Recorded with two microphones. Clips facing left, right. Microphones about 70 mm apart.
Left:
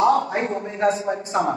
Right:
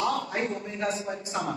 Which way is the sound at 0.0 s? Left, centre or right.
Left.